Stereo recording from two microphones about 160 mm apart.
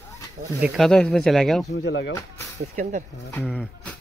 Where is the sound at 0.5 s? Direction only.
5° right (ahead or behind).